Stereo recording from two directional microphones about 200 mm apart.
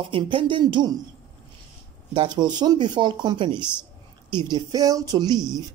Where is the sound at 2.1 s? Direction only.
25° right (ahead or behind).